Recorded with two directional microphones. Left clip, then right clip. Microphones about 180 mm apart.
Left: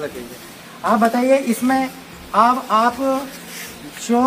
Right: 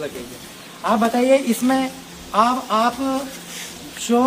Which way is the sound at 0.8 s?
Centre (ahead or behind).